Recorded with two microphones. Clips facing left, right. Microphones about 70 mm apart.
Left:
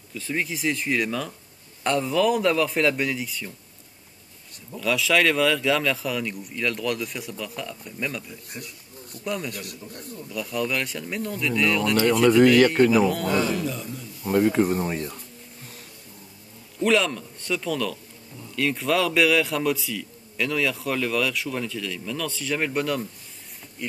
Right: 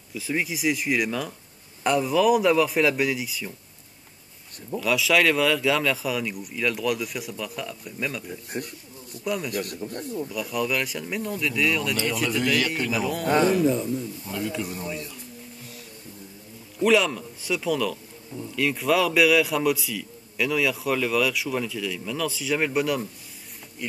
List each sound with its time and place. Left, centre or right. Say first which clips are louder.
0.1 s a man's voice: right 1 dB; centre
4.7 s a man's voice: even; centre
8.3 s speech: right 6 dB; right
9.2 s a man's voice: right 2 dB; centre
9.6 s speech: right 7 dB; right
10.3 s a man's voice: left 1 dB; centre
12.3 s speech: left 11 dB; left
13.0 s a man's voice: left 4 dB; centre
13.7 s a man's voice: right 8 dB; right
14.2 s speech: left 10 dB; left
16.8 s a man's voice: right 1 dB; centre